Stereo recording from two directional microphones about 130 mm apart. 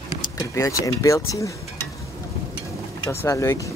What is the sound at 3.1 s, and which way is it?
Speech, 20° left (ahead or behind).